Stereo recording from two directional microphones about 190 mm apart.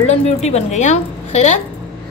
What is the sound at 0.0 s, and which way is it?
A woman's voice, 35° left (ahead or behind).